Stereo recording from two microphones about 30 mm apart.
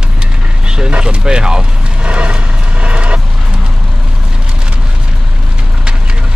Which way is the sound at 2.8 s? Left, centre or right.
Right.